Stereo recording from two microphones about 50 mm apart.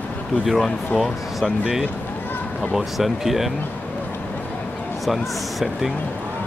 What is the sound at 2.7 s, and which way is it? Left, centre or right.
Speech, centre.